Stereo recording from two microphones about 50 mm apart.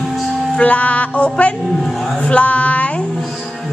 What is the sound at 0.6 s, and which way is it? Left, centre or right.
Music, left.